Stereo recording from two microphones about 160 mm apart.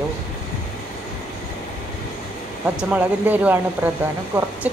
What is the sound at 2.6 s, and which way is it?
Speech, 10° right (ahead or behind).